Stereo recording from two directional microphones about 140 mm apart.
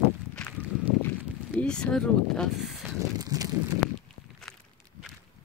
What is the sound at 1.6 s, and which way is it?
Speech, 5° left (ahead or behind).